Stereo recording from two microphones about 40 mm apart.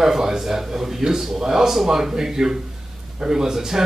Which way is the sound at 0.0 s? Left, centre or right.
Centre.